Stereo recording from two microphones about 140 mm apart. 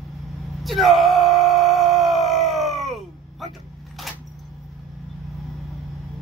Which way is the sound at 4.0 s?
Centre (ahead or behind).